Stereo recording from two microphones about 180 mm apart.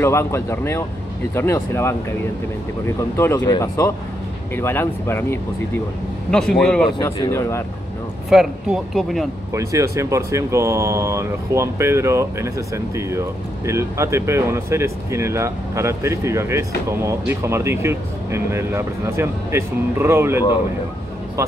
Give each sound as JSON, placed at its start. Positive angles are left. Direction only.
{"t": 0.0, "sound": "speech", "side_deg": 15}
{"t": 3.0, "sound": "speech", "side_deg": 15}
{"t": 6.3, "sound": "speech", "side_deg": 5}
{"t": 7.2, "sound": "speech", "side_deg": 15}
{"t": 8.3, "sound": "speech", "side_deg": 0}
{"t": 9.5, "sound": "a man's voice", "side_deg": -15}